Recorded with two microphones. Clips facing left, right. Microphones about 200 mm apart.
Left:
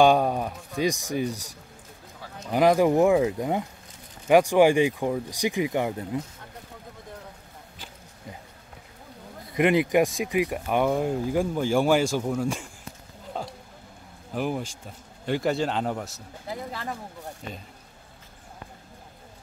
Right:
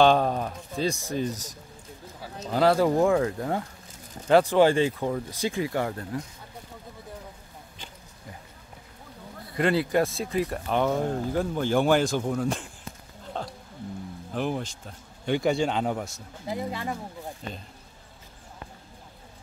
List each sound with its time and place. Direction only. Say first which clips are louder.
0.0 s speech: left 1 dB; 10° left (ahead or behind)
9.5 s speech: left 3 dB; 20° left (ahead or behind)
13.4 s music: even; 5° left (ahead or behind)
14.3 s speech: left 1 dB; 5° left (ahead or behind)
16.4 s speech: right 3 dB; 15° right (ahead or behind)